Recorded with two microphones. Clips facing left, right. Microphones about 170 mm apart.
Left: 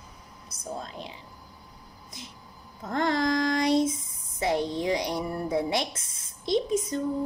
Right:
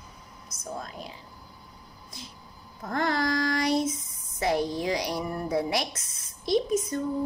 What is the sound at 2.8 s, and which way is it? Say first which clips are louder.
Speech: left 2 dB; 20° left (ahead or behind).